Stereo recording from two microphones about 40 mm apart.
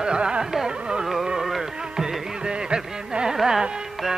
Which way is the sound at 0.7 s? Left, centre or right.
Right.